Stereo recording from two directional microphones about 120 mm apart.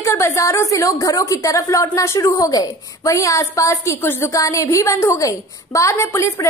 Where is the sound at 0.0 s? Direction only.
25° left (ahead or behind).